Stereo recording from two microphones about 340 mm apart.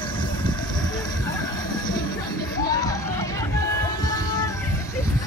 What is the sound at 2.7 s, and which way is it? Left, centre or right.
Music, centre.